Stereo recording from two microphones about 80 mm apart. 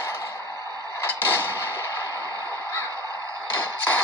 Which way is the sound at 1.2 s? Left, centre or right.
Left.